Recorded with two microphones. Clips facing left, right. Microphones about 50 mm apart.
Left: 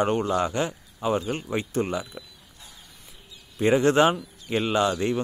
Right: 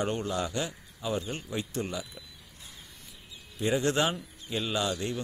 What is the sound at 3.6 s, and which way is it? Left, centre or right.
A man's voice, left.